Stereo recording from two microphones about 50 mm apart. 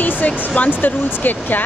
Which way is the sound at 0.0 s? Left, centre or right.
Left.